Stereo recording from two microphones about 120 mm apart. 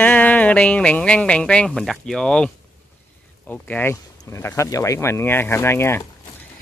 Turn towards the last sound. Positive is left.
turn(degrees=20)  # may be behind; listen again after turning